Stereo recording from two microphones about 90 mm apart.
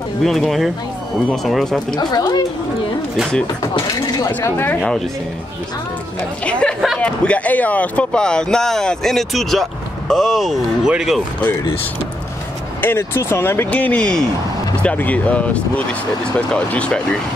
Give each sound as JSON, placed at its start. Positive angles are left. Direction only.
{"t": 0.2, "sound": "speech", "side_deg": 5}
{"t": 2.0, "sound": "speech", "side_deg": 45}
{"t": 4.3, "sound": "speech", "side_deg": 25}
{"t": 4.7, "sound": "speech", "side_deg": 10}
{"t": 6.6, "sound": "speech", "side_deg": 10}
{"t": 12.8, "sound": "speech", "side_deg": 30}
{"t": 13.7, "sound": "speech", "side_deg": 15}